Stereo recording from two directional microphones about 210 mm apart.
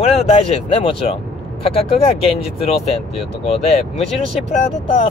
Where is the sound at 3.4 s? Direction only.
30° left (ahead or behind).